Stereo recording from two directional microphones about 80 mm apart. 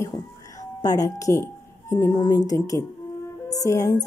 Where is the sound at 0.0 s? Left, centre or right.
Left.